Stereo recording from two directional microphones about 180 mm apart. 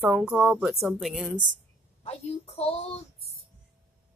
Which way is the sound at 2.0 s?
35° left (ahead or behind).